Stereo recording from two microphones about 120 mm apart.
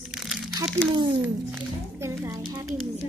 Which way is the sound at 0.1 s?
5° right (ahead or behind).